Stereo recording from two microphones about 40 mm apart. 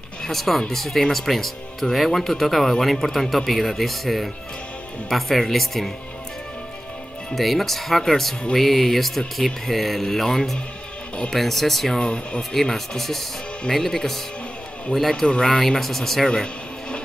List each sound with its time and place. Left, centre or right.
0.2 s speech: centre
7.3 s speech: centre
12.0 s speech: left
12.5 s speech: centre